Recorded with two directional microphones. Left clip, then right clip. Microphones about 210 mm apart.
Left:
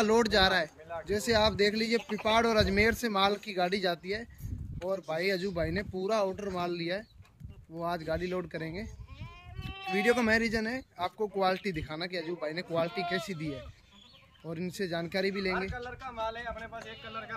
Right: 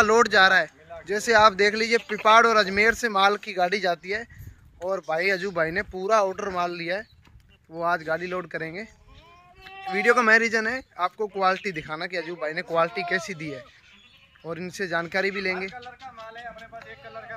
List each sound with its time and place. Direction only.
0.0 s speech: 10° left (ahead or behind)